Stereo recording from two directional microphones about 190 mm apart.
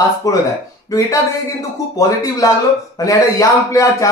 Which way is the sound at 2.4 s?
20° left (ahead or behind).